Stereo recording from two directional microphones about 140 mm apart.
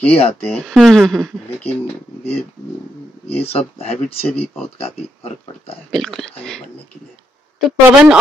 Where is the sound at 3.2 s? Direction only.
45° left (ahead or behind).